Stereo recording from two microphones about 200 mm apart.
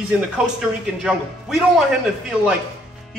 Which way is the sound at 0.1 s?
5° right (ahead or behind).